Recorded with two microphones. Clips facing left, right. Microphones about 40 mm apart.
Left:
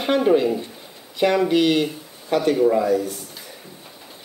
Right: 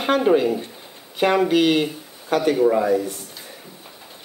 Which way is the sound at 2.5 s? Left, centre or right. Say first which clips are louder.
Even; centre.